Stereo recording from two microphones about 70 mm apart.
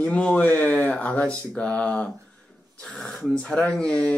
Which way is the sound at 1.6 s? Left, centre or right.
Centre.